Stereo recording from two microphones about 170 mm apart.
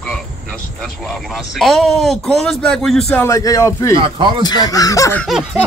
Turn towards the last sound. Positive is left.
turn(degrees=0)  # may be behind; listen again after turning